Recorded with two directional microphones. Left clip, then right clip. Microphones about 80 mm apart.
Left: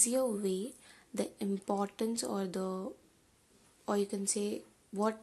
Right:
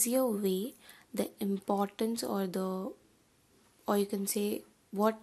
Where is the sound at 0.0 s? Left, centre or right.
Right.